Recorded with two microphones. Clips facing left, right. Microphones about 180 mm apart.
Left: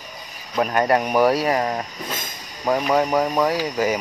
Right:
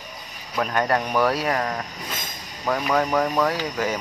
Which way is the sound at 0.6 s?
10° left (ahead or behind).